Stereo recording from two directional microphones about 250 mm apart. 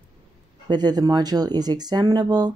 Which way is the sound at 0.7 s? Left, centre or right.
Centre.